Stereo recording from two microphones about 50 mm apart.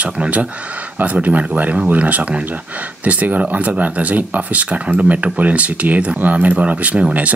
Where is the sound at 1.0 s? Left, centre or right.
Right.